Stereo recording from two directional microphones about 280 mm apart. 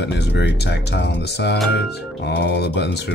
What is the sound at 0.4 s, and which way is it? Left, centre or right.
Speech, left.